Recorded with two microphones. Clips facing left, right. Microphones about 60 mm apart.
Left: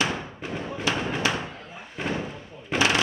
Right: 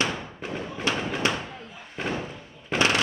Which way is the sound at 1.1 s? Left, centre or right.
Centre.